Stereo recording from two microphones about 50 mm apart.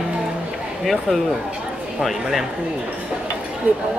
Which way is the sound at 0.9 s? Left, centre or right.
Centre.